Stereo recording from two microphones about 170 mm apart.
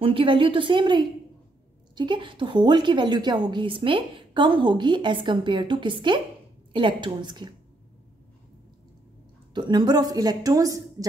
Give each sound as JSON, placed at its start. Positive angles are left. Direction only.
{"t": 0.0, "sound": "a woman's voice", "side_deg": -30}
{"t": 9.5, "sound": "a woman's voice", "side_deg": -25}